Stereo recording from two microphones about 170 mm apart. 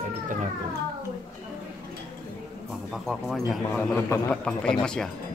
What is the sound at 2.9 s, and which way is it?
Speech, centre (ahead or behind).